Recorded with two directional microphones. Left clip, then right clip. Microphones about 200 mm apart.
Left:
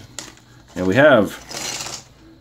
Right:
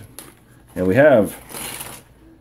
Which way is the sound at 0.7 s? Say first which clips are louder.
Even; centre (ahead or behind).